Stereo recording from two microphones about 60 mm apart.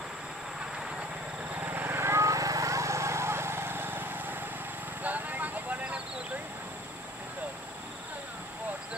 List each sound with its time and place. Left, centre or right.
1.5 s vehicle: right
2.2 s vehicle: right